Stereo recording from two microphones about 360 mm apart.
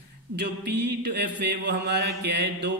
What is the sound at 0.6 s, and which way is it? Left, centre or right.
Mantra, right.